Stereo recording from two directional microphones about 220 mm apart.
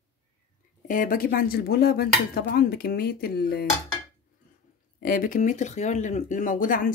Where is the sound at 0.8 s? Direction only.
40° left (ahead or behind).